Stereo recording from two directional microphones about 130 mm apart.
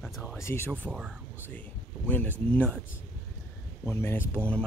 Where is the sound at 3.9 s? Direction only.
20° left (ahead or behind).